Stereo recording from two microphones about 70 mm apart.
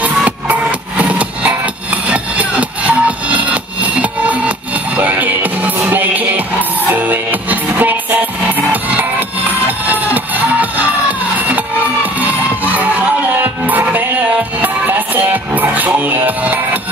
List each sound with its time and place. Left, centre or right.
0.0 s music: right
13.4 s music: right